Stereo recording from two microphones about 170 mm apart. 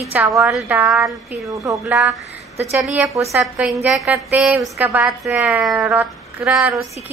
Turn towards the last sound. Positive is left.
turn(degrees=0)  # may be behind; listen again after turning